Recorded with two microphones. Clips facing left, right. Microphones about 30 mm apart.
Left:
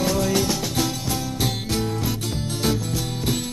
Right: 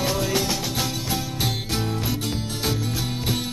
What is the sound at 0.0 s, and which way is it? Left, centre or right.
Music, centre.